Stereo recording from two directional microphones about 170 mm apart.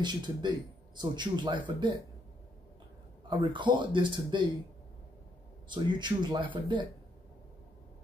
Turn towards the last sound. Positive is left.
turn(degrees=-30)  # may be behind; listen again after turning